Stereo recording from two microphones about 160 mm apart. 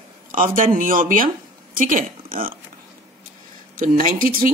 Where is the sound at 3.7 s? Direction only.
55° right (ahead or behind).